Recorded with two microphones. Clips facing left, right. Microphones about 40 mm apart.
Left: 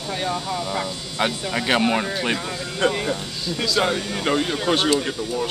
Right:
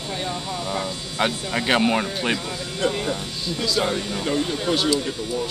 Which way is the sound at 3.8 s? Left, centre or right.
Left.